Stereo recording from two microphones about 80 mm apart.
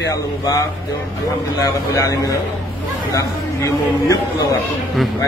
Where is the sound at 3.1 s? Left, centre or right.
Left.